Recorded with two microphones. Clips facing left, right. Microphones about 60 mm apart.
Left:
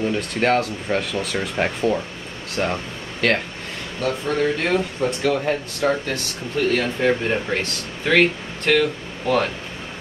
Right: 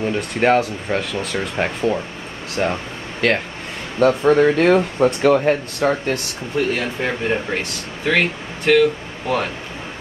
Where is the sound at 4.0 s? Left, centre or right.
Right.